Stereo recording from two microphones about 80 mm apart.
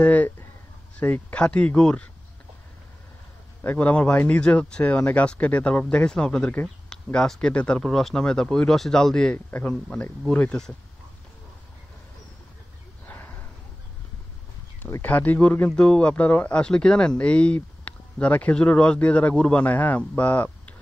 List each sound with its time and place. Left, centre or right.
0.0 s speech: centre
3.6 s speech: left
13.0 s a sound: left
15.0 s speech: left